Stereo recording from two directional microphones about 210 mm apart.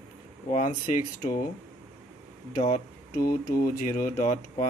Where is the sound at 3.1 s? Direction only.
45° left (ahead or behind).